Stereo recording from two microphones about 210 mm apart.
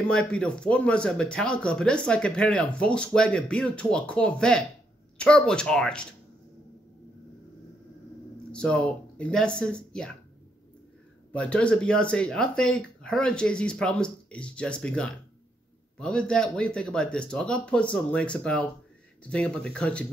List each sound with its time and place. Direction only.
0.1 s a man's voice: 5° left (ahead or behind)
8.5 s a man's voice: 5° left (ahead or behind)
11.3 s a man's voice: 5° left (ahead or behind)